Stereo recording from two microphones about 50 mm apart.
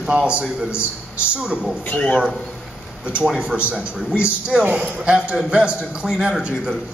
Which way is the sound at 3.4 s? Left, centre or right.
Right.